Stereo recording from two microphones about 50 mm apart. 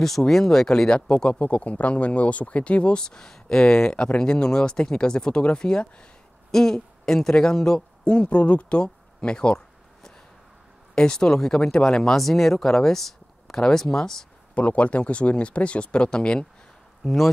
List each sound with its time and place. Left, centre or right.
0.0 s speech: centre
11.0 s speech: centre
14.5 s speech: left